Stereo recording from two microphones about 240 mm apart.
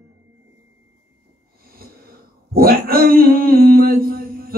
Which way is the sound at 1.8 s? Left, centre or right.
Right.